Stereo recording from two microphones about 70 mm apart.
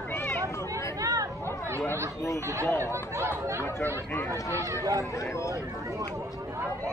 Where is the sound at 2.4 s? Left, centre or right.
Right.